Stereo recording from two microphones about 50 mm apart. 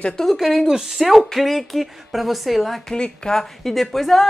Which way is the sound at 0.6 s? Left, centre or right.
Centre.